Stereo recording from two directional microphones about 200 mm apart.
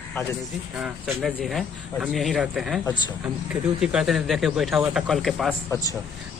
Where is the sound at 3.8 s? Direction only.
5° right (ahead or behind).